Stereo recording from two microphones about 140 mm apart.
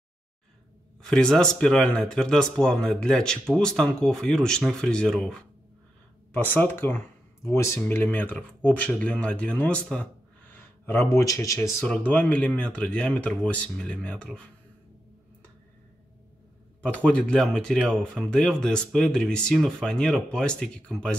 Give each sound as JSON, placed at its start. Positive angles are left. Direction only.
{"t": 1.0, "sound": "speech", "side_deg": 5}
{"t": 11.8, "sound": "speech", "side_deg": 10}
{"t": 16.8, "sound": "speech", "side_deg": 10}